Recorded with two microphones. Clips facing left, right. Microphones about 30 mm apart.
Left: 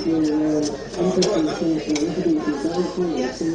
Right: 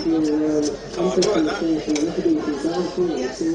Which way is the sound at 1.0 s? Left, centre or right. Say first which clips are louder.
Right 1 dB; right.